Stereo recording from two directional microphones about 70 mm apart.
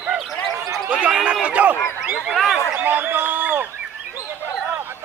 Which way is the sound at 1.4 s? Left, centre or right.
Right.